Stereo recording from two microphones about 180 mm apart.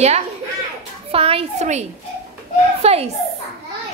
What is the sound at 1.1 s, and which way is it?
A child's voice, 30° right (ahead or behind).